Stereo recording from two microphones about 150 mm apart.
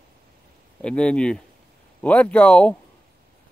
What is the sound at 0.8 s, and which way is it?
Speech, 5° left (ahead or behind).